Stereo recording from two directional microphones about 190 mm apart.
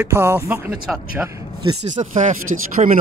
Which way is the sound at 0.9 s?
5° right (ahead or behind).